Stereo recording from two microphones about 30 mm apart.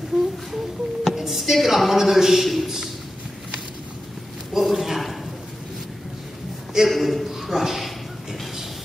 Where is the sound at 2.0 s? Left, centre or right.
Centre.